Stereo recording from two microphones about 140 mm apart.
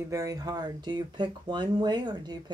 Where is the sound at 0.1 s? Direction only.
25° right (ahead or behind).